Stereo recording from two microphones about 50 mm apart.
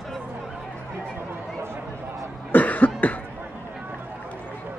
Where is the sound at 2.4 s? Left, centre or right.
Left.